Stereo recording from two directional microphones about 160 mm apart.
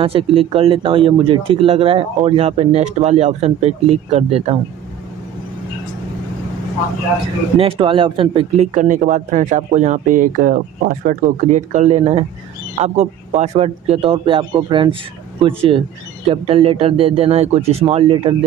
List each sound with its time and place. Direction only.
0.0 s speech: 35° right (ahead or behind)
7.5 s speech: 35° right (ahead or behind)
8.7 s speech: 50° right (ahead or behind); by 15.0 s 30° right (ahead or behind)
16.3 s speech: 35° right (ahead or behind)